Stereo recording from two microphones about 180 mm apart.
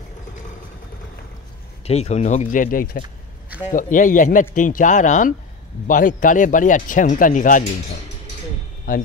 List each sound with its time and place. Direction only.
1.9 s speech: 35° left (ahead or behind)
8.9 s speech: 50° left (ahead or behind)